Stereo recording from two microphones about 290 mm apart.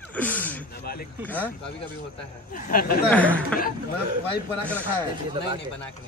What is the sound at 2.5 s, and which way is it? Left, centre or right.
Speech, left.